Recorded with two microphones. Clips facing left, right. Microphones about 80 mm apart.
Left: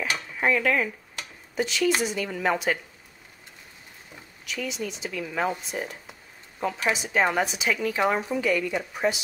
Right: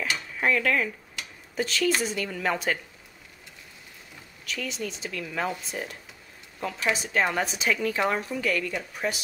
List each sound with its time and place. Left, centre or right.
0.3 s cutlery: centre
1.6 s speech: centre
4.5 s speech: centre
8.0 s speech: centre